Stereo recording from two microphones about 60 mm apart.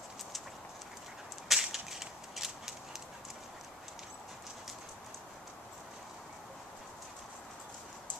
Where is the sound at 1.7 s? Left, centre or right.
Centre.